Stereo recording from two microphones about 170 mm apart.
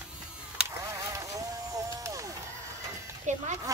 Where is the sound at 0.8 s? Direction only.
20° right (ahead or behind).